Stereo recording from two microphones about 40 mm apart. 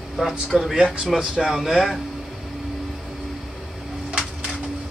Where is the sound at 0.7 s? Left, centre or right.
Centre.